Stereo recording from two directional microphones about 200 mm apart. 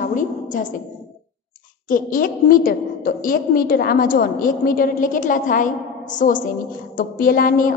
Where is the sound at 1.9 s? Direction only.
40° left (ahead or behind).